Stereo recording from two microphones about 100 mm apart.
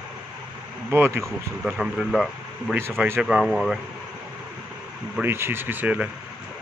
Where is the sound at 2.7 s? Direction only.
25° right (ahead or behind).